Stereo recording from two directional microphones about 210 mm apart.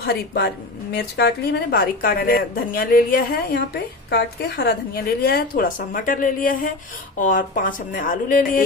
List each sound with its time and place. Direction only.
0.0 s a woman's voice: 50° left (ahead or behind)